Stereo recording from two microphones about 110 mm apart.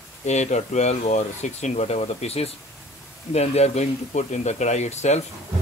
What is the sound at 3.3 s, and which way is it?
Speech, 80° left.